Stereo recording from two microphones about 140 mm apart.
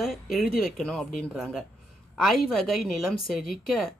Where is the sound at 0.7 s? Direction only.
5° left (ahead or behind).